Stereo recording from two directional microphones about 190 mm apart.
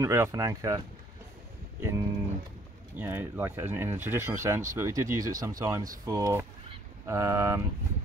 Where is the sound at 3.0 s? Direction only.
10° right (ahead or behind).